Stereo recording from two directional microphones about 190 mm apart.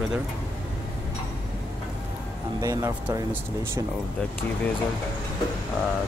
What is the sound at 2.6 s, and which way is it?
Speech, 15° right (ahead or behind).